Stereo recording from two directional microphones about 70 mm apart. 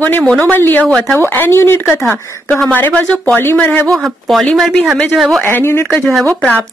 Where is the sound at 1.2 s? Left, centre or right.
Left.